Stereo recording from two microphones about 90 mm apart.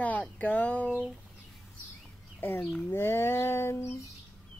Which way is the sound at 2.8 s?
25° left (ahead or behind).